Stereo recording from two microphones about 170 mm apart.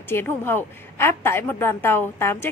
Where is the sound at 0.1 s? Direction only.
15° left (ahead or behind).